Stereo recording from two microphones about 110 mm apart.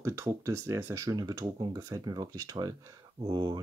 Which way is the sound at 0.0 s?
25° right (ahead or behind).